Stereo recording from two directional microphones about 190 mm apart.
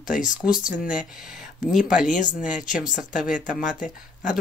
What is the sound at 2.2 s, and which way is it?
Speech, 40° left (ahead or behind).